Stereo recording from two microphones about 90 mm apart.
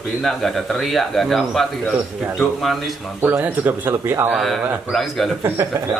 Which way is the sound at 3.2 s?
20° right (ahead or behind).